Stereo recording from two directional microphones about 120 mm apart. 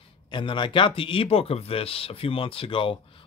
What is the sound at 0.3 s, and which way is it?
Speech, 40° left (ahead or behind).